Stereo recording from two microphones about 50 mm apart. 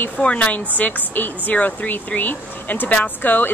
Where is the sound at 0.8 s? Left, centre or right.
Left.